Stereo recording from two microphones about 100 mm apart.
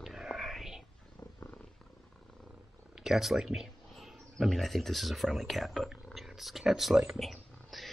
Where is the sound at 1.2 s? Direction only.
25° left (ahead or behind).